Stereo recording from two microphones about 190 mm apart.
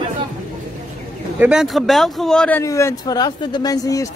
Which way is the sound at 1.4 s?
5° right (ahead or behind).